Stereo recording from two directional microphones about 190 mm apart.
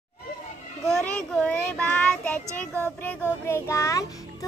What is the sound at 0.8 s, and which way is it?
Child singing, centre (ahead or behind).